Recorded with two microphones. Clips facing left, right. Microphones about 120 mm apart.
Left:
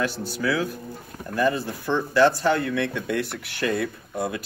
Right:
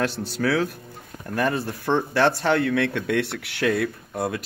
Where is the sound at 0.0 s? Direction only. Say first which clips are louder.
Right 2 dB; 65° right (ahead or behind).